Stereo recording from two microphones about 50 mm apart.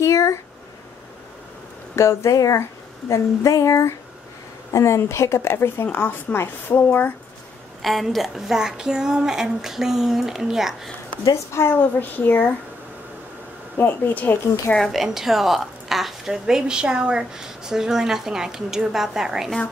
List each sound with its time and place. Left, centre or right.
0.0 s a sound: left
2.0 s speech: left
4.7 s a woman's voice: left
5.5 s speech: left
5.9 s speech: left
6.3 s a woman's voice: left
7.8 s a woman's voice: centre
11.2 s a woman's voice: left
12.0 s speech: left
13.7 s speech: left
14.8 s a woman's voice: centre